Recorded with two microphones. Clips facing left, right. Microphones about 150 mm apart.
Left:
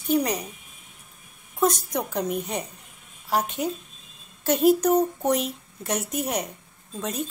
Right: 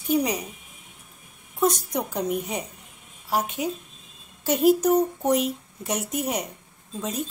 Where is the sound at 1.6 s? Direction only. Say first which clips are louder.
Even; centre (ahead or behind).